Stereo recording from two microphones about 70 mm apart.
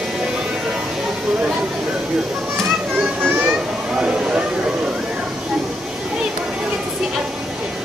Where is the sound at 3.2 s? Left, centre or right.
Right.